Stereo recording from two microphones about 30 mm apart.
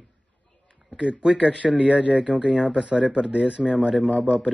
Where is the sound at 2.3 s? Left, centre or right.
Right.